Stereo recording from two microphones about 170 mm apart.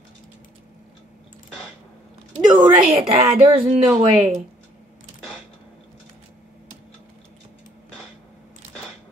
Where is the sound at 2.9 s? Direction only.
30° right (ahead or behind).